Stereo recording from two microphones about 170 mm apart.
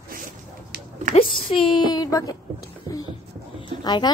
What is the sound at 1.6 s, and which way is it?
Speech, 25° left (ahead or behind).